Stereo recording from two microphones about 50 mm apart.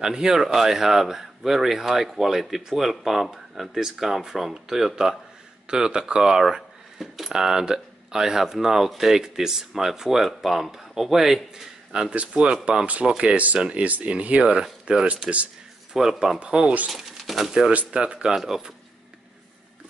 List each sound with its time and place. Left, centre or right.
0.0 s speech: centre
14.6 s speech: centre
15.2 s speech: right
15.9 s speech: centre
16.3 s speech: centre
16.9 s speech: centre
17.6 s speech: right
18.3 s speech: centre